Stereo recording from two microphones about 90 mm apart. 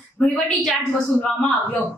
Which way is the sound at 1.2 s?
15° left (ahead or behind).